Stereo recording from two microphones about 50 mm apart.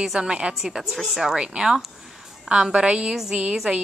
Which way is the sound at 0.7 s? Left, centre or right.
Centre.